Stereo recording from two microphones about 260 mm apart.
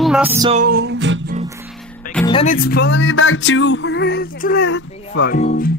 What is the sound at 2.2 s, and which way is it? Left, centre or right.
Speech, left.